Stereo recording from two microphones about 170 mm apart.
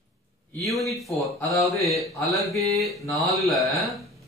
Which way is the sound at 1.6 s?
Centre (ahead or behind).